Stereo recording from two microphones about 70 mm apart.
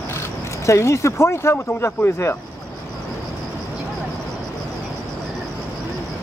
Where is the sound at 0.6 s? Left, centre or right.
Left.